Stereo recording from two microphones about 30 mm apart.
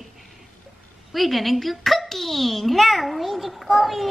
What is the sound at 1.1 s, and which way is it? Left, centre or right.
A child's voice, centre.